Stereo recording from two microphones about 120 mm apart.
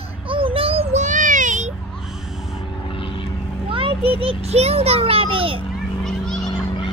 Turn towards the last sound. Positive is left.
turn(degrees=45)  # may be behind; listen again after turning